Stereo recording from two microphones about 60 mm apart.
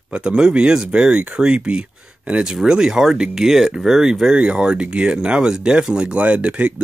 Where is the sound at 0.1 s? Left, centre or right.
Centre.